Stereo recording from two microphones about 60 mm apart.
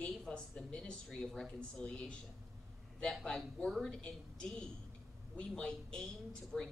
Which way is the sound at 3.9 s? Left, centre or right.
Centre.